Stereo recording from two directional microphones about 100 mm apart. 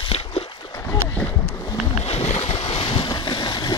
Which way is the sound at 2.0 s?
90° left.